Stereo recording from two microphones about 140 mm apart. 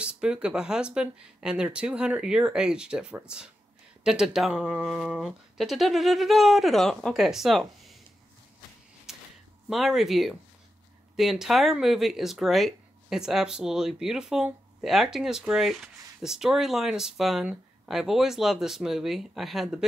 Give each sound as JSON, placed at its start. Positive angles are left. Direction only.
{"t": 0.0, "sound": "speech", "side_deg": -5}
{"t": 9.1, "sound": "a sound", "side_deg": 0}
{"t": 9.7, "sound": "speech", "side_deg": 0}